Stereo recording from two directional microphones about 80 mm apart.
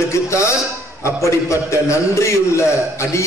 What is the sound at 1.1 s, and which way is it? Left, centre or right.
A man's voice, left.